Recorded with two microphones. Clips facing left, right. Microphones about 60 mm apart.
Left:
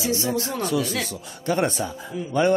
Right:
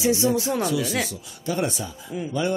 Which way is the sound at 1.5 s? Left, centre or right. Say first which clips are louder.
Left 3 dB; left.